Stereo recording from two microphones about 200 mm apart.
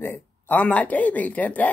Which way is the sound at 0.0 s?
10° left (ahead or behind).